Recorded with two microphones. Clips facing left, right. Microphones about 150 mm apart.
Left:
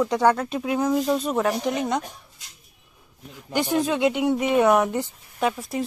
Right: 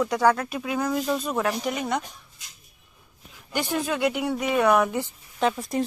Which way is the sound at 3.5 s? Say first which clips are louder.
Left 4 dB; 15° left (ahead or behind).